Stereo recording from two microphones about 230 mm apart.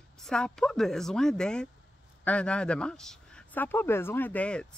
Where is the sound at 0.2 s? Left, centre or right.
Centre.